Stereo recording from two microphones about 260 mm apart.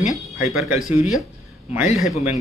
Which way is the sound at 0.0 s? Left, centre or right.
Centre.